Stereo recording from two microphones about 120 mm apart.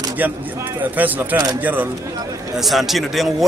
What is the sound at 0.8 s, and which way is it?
A man's voice, 15° right (ahead or behind).